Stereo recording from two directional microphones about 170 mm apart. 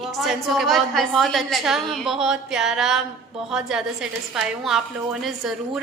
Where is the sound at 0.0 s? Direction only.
Centre (ahead or behind).